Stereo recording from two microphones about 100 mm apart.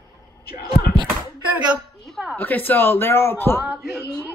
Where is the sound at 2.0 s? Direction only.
Centre (ahead or behind).